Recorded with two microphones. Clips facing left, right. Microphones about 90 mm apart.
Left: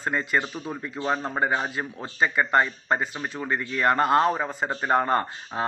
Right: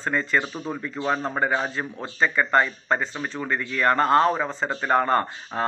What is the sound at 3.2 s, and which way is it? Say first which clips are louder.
A man's voice: right 1 dB; 25° left (ahead or behind).